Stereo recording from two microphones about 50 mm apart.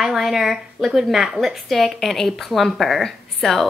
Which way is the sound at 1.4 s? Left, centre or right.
Centre.